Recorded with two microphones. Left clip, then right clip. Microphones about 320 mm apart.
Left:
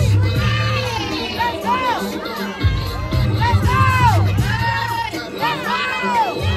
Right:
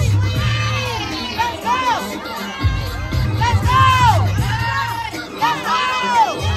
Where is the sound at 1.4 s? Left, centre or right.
Right.